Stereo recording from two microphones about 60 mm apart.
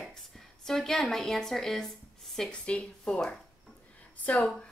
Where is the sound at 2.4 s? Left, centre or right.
Centre.